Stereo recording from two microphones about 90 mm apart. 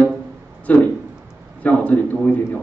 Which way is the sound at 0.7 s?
15° left (ahead or behind).